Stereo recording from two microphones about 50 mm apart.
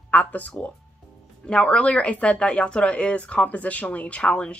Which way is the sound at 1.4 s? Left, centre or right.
Centre.